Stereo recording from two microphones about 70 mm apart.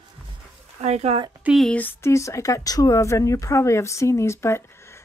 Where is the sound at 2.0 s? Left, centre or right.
Left.